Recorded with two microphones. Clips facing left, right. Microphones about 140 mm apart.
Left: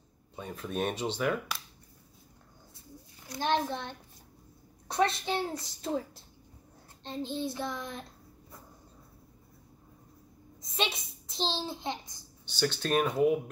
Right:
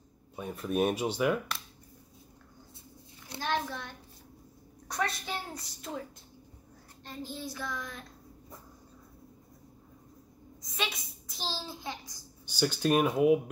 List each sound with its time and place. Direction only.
0.4 s speech: 5° right (ahead or behind)
3.3 s a child's voice: 25° left (ahead or behind)
10.6 s a child's voice: 25° left (ahead or behind)
12.4 s speech: 10° right (ahead or behind)